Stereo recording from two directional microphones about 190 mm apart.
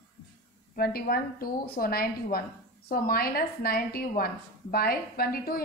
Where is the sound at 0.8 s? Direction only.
50° left (ahead or behind).